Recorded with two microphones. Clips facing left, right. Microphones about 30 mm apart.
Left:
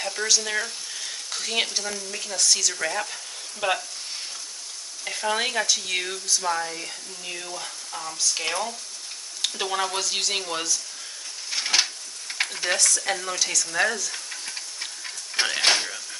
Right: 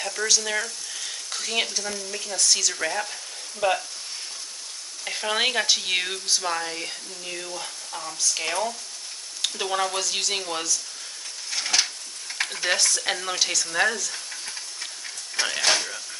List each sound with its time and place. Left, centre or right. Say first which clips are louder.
0.0 s speech: even; centre
3.6 s speech: right 2 dB; centre
5.0 s stir: right 1 dB; centre
5.7 s speech: right 2 dB; right
7.2 s speech: even; centre
11.5 s a sound: left 1 dB; centre
12.7 s speech: left 1 dB; right
13.7 s speech: right 1 dB; centre
14.3 s steam: left 1 dB; centre
15.4 s speech: left 2 dB; left
15.7 s a sound: even; centre